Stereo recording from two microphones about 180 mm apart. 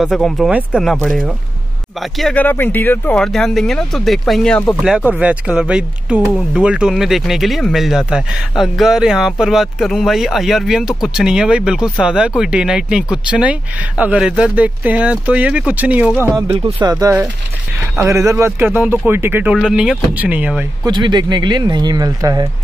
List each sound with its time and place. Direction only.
0.0 s speech: centre (ahead or behind)
20.8 s speech: 25° right (ahead or behind)